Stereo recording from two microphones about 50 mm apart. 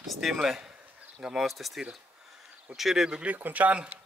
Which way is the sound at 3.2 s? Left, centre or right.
Right.